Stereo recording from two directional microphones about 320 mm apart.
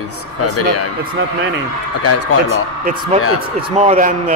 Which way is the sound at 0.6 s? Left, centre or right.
Left.